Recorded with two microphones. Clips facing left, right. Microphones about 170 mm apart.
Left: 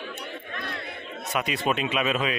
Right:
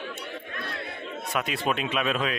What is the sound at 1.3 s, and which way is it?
Speech, centre (ahead or behind).